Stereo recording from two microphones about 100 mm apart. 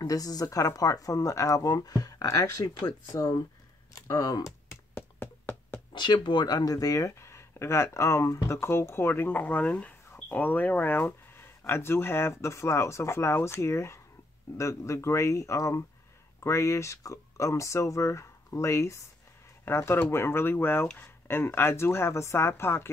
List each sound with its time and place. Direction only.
0.0 s speech: 35° left (ahead or behind)
4.4 s music: 25° left (ahead or behind)
5.9 s speech: 50° left (ahead or behind); by 22.8 s 25° left (ahead or behind)